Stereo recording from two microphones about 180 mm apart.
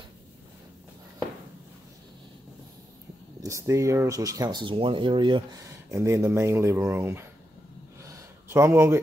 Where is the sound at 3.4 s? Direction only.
15° right (ahead or behind).